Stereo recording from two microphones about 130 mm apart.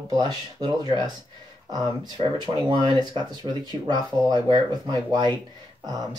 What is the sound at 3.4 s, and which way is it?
Speech, 30° right (ahead or behind).